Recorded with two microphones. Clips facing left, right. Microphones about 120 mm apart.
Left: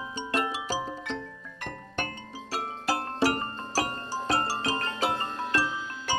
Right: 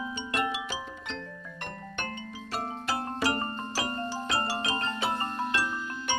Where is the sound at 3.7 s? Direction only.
40° left (ahead or behind).